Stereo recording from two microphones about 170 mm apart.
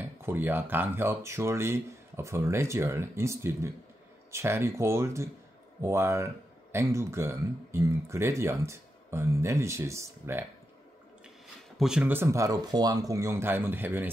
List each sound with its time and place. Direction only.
0.0 s speech: 15° right (ahead or behind)
11.8 s speech: 5° right (ahead or behind)